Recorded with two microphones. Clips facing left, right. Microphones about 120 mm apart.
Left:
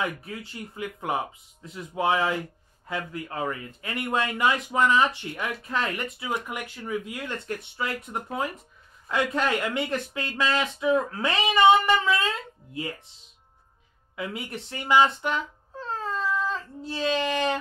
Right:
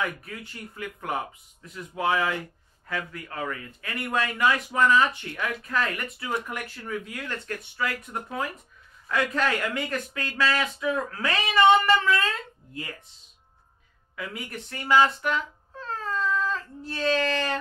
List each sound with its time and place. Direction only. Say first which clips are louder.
0.0 s speech: left 1 dB; 25° left (ahead or behind)
6.2 s speech: right 2 dB; 15° left (ahead or behind)
14.1 s speech: left 2 dB; 25° left (ahead or behind)